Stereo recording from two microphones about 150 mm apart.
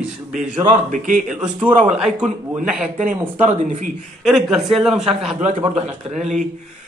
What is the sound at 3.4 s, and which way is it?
Speech, 55° right (ahead or behind).